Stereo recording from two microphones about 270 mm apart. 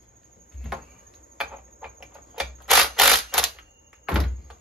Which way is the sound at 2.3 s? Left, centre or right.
Centre.